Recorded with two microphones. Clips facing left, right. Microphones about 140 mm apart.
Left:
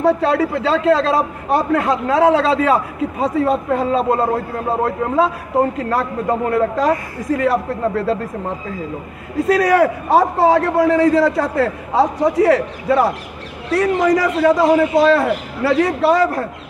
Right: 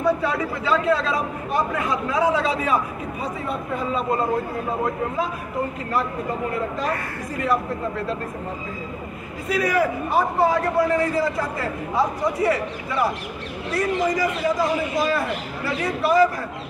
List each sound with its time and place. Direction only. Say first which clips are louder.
0.0 s a man's voice: left 7 dB; 90° left
9.5 s a man's voice: left 7 dB; 85° left; by 16.4 s 70° left (ahead or behind)